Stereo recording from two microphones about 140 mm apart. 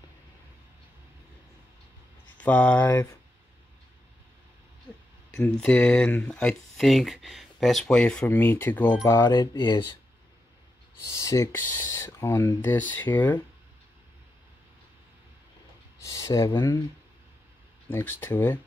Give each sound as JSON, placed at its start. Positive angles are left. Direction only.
{"t": 2.3, "sound": "speech", "side_deg": 10}
{"t": 2.9, "sound": "speech", "side_deg": 20}
{"t": 5.3, "sound": "speech", "side_deg": 10}
{"t": 11.1, "sound": "speech", "side_deg": 20}
{"t": 16.0, "sound": "speech", "side_deg": 20}
{"t": 17.8, "sound": "speech", "side_deg": 15}